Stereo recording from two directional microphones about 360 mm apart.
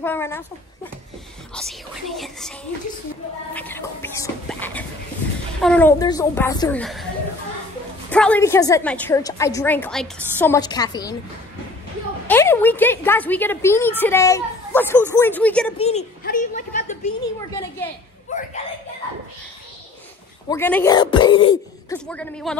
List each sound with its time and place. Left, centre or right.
0.0 s a woman's voice: centre
1.5 s a woman's voice: centre
3.5 s a woman's voice: centre
8.1 s a woman's voice: centre
12.3 s a woman's voice: centre
15.8 s a child's voice: centre
18.3 s a sound: left
20.4 s a woman's voice: centre